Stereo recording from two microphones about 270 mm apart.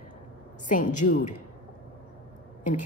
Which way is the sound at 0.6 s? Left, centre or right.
Left.